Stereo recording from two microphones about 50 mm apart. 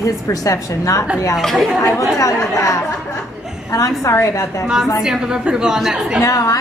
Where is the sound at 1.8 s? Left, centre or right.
Left.